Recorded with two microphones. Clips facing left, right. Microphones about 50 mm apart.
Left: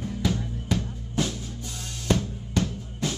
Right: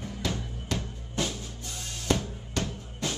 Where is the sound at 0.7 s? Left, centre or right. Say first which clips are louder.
Left 5 dB; centre.